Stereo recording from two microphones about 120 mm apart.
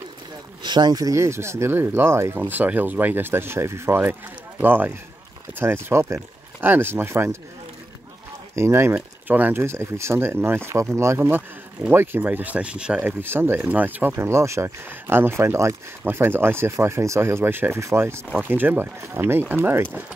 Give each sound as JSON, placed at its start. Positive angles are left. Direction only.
{"t": 0.6, "sound": "speech", "side_deg": -40}
{"t": 8.5, "sound": "speech", "side_deg": -20}